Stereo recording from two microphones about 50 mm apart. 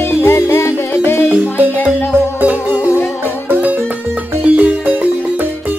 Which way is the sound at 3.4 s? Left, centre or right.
Right.